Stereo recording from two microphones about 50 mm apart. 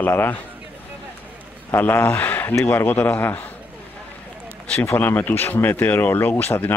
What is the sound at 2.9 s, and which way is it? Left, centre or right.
Speech, left.